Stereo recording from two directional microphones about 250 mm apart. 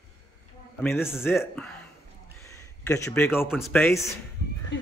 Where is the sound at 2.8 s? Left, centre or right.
Centre.